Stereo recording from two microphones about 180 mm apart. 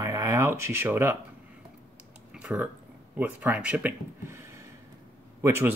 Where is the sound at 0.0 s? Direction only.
15° right (ahead or behind).